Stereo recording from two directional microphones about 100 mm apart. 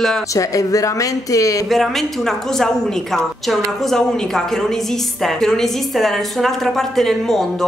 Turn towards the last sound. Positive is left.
turn(degrees=5)  # may be behind; listen again after turning